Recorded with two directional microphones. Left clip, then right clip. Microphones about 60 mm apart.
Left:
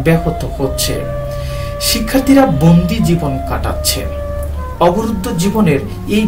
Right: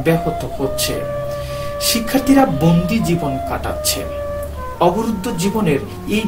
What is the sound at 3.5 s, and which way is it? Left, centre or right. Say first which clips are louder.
Speech: left 2 dB; right.